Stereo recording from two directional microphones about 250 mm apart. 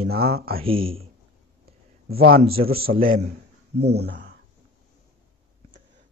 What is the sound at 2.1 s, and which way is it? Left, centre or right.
Speech, right.